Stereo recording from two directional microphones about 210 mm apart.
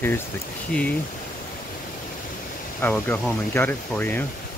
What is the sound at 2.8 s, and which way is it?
Speech, 10° left (ahead or behind).